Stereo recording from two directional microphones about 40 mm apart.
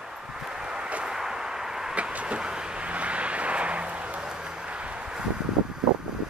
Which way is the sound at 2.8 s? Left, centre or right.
Right.